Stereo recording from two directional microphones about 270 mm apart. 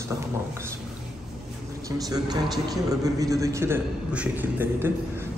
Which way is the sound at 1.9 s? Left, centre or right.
Centre.